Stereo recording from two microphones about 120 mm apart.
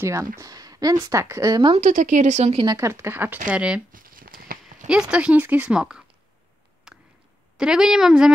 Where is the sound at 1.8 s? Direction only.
90° right.